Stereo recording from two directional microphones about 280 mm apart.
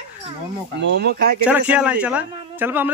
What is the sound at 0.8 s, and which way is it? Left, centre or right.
Speech, right.